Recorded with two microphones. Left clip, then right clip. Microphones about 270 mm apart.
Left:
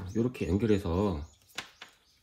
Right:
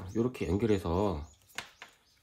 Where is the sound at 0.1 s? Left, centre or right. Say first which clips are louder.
Left 1 dB; right.